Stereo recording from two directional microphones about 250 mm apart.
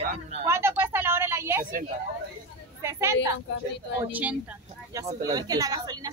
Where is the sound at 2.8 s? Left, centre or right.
Centre.